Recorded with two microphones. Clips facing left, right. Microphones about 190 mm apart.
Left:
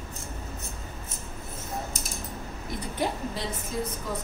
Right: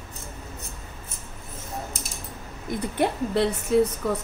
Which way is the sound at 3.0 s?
65° right (ahead or behind).